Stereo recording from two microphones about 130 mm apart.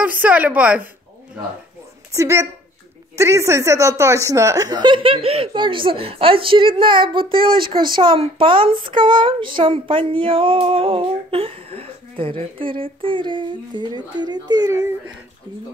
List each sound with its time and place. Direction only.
0.2 s a woman's voice: 10° right (ahead or behind)
2.1 s speech: 20° right (ahead or behind)